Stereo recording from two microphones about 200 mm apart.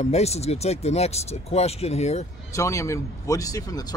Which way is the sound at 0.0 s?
30° left (ahead or behind).